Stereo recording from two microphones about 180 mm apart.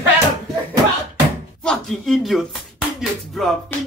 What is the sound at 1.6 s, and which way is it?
Speech, 5° left (ahead or behind).